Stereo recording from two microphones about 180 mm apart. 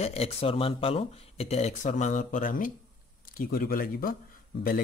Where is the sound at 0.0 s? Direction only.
35° left (ahead or behind).